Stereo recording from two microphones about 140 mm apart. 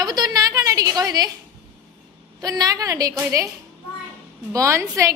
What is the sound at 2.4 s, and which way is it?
A woman's voice, 25° right (ahead or behind).